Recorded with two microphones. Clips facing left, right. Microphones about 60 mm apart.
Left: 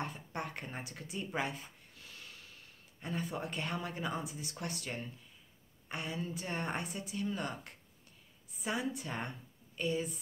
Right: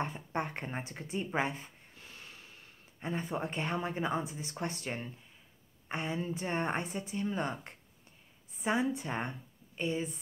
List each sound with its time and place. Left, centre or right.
0.0 s a woman's voice: right